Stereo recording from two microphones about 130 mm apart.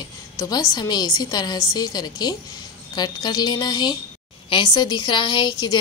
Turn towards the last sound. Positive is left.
turn(degrees=35)  # may be behind; listen again after turning